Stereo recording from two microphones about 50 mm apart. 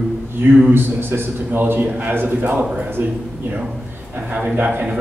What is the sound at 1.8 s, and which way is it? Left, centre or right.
Speech, right.